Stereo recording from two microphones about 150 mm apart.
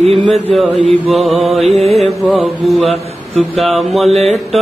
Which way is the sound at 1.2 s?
Centre (ahead or behind).